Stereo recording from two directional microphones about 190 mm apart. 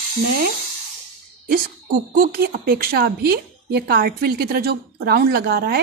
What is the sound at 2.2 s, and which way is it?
Speech, 50° right (ahead or behind).